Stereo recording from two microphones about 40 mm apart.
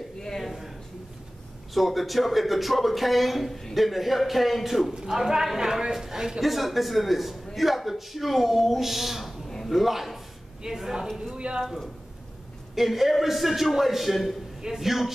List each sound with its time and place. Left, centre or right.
0.4 s a sound: centre
1.7 s speech: centre
4.9 s a man's voice: centre
11.3 s speech: right
11.6 s speech: centre